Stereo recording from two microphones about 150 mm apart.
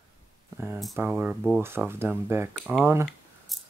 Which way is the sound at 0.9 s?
15° right (ahead or behind).